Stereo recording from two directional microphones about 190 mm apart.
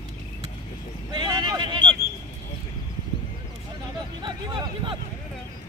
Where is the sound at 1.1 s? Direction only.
25° right (ahead or behind).